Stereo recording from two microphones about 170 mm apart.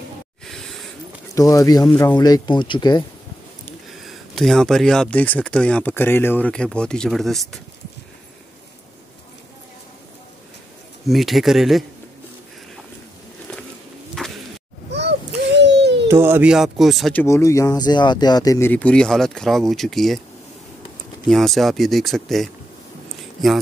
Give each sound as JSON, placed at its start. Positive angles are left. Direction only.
{"t": 0.5, "sound": "a sound", "side_deg": 0}
{"t": 1.3, "sound": "speech", "side_deg": 20}
{"t": 4.0, "sound": "speech", "side_deg": 0}
{"t": 11.1, "sound": "speech", "side_deg": 0}
{"t": 14.2, "sound": "a sound", "side_deg": 0}
{"t": 14.9, "sound": "a sound", "side_deg": -90}
{"t": 16.1, "sound": "speech", "side_deg": -15}
{"t": 18.7, "sound": "speech", "side_deg": 10}
{"t": 21.3, "sound": "speech", "side_deg": 0}